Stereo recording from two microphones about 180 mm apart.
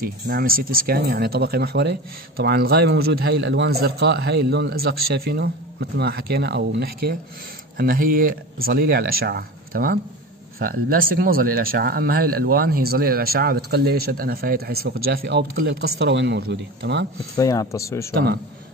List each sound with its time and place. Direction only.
0.0 s speech: 55° right (ahead or behind); by 17.1 s 75° right (ahead or behind)
17.4 s speech: 20° left (ahead or behind)
18.1 s speech: 60° right (ahead or behind)